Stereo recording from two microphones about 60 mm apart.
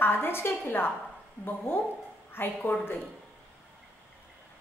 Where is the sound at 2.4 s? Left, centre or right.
Left.